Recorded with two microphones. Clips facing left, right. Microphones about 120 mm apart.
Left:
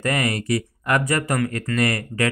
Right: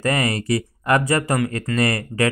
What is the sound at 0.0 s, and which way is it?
Speech, 30° right (ahead or behind).